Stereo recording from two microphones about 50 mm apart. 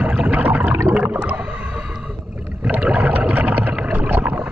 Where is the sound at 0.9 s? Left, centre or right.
Right.